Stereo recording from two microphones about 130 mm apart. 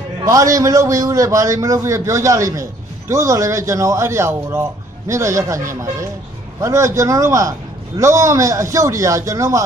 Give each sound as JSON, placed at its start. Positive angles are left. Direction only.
{"t": 0.2, "sound": "a man's voice", "side_deg": -25}